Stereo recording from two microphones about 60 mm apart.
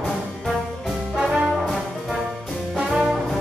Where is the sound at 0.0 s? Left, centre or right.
Centre.